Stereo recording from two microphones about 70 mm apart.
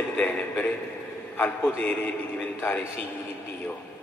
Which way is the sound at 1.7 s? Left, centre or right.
Left.